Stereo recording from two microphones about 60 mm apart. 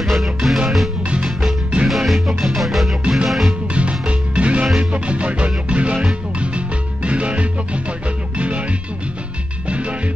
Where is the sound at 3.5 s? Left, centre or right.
Centre.